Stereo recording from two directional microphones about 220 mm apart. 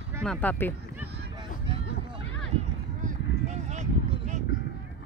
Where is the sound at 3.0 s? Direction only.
35° right (ahead or behind).